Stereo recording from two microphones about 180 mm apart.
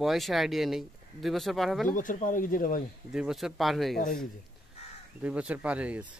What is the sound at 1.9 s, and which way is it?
Speech, 45° left (ahead or behind).